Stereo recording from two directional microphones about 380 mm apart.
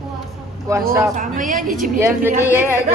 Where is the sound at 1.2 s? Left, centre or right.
Centre.